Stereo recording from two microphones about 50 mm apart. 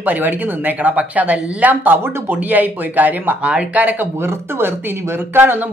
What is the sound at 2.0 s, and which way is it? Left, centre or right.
Speech, right.